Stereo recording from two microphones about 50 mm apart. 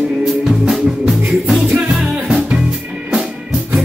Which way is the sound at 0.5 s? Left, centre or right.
Centre.